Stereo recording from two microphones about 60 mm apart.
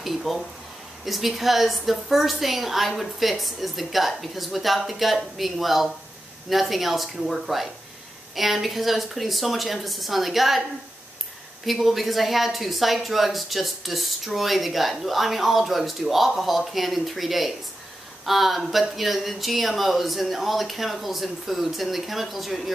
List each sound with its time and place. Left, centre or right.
0.0 s a woman's voice: centre
11.6 s a woman's voice: centre